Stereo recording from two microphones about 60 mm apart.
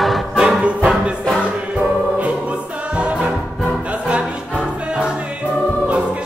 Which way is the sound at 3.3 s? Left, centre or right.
Centre.